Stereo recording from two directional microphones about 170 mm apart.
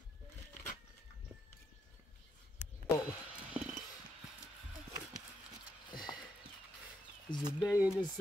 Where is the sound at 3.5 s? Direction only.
10° right (ahead or behind).